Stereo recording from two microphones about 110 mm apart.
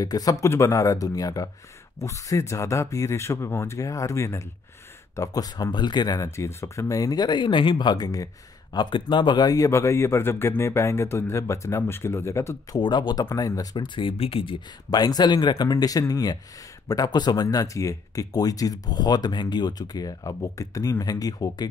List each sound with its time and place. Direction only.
0.0 s a man's voice: 35° left (ahead or behind)
12.8 s speech: 40° left (ahead or behind)
13.9 s speech: 55° left (ahead or behind)
14.9 s speech: 40° left (ahead or behind)